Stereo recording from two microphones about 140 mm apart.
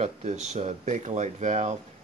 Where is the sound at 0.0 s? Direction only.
50° right (ahead or behind).